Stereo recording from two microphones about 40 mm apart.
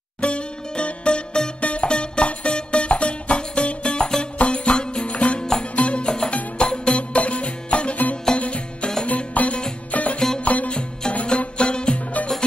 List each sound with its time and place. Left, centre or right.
0.2 s music: left
5.4 s music: centre
5.8 s music: left
10.7 s music: left